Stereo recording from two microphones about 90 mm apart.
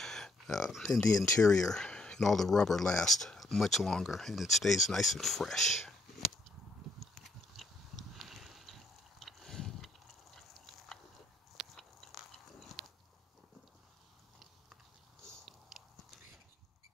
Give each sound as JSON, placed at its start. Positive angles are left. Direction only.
{"t": 0.0, "sound": "a sound", "side_deg": 5}
{"t": 1.0, "sound": "speech", "side_deg": 40}
{"t": 1.5, "sound": "speech", "side_deg": 5}
{"t": 7.0, "sound": "biting", "side_deg": 0}
{"t": 8.1, "sound": "a sound", "side_deg": 0}
{"t": 11.5, "sound": "biting", "side_deg": 0}
{"t": 15.7, "sound": "biting", "side_deg": 0}